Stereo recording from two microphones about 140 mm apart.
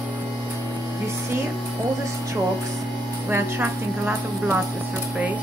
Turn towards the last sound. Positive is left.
turn(degrees=-15)  # may be behind; listen again after turning